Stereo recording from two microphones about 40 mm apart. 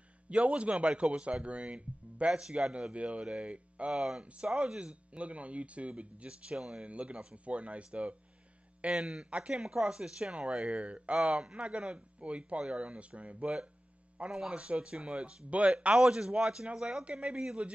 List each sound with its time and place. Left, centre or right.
0.3 s speech: right
2.9 s speech: right
3.9 s speech: centre; by 8.2 s right
8.9 s speech: centre
9.2 s speech: right
9.5 s speech: centre
10.7 s speech: right
11.1 s speech: centre
11.5 s speech: right